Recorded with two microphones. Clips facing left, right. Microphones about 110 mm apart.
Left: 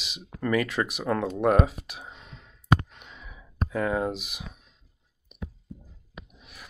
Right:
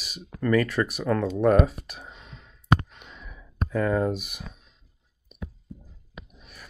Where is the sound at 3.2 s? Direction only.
5° left (ahead or behind).